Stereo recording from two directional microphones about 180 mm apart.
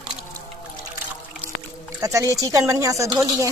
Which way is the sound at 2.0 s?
20° right (ahead or behind).